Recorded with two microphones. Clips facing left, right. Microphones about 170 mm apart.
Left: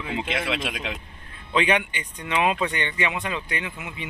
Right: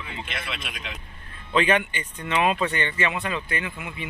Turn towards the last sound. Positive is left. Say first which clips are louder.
# right 1 dB
turn(degrees=20)  # may be behind; listen again after turning